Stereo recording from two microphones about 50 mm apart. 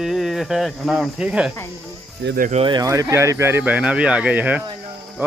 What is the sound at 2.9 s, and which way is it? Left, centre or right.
Speech, right.